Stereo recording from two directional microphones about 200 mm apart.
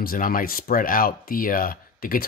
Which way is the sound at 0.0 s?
45° left (ahead or behind).